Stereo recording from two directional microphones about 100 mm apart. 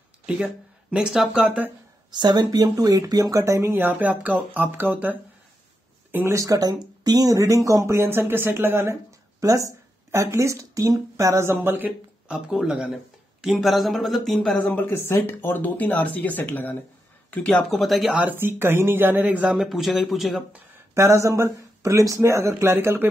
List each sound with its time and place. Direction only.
0.3 s speech: 10° right (ahead or behind)
2.0 s speech: 45° right (ahead or behind); by 5.1 s 20° right (ahead or behind)
6.1 s speech: 25° right (ahead or behind)
6.4 s speech: 35° right (ahead or behind)
9.4 s speech: 35° right (ahead or behind)
12.3 s speech: 5° right (ahead or behind)
14.6 s speech: 15° left (ahead or behind)
17.3 s speech: 5° left (ahead or behind)
18.2 s speech: 20° right (ahead or behind); by 20.4 s centre (ahead or behind)
20.9 s speech: 30° right (ahead or behind)